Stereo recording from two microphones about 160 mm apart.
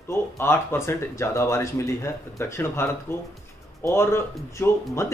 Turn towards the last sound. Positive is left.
turn(degrees=15)  # may be behind; listen again after turning